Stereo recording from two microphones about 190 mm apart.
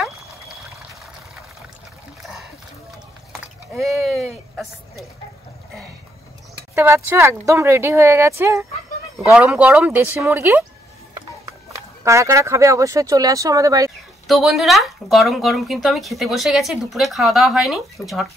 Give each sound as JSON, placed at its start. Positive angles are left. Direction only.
{"t": 3.7, "sound": "a sound", "side_deg": 0}
{"t": 6.7, "sound": "speech", "side_deg": -10}
{"t": 12.0, "sound": "speech", "side_deg": -15}
{"t": 14.2, "sound": "speech", "side_deg": 0}